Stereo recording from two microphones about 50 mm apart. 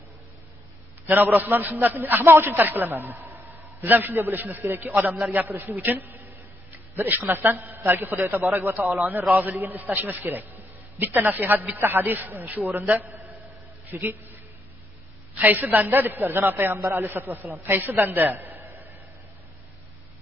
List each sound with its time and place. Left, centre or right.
1.0 s a man's voice: right
2.2 s a woman's voice: right
2.5 s a man's voice: right
9.3 s a man's voice: right